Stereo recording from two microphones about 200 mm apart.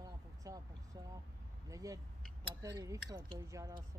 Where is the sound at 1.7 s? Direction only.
15° right (ahead or behind).